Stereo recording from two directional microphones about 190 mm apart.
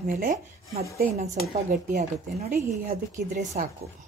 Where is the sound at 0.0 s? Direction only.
45° right (ahead or behind).